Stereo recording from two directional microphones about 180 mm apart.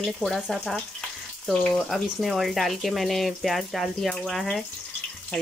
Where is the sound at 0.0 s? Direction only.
Centre (ahead or behind).